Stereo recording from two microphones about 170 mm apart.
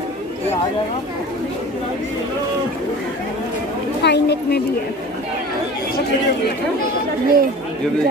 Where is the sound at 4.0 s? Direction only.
80° left.